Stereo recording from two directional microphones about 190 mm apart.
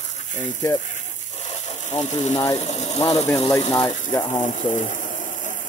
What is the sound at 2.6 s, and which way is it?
Speech, 35° left (ahead or behind).